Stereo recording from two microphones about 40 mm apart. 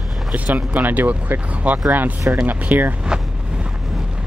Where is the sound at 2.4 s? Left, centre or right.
Right.